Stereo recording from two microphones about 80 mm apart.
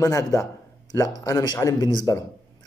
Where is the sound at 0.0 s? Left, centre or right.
Left.